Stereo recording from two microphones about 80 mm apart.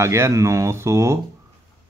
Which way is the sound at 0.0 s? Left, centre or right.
Right.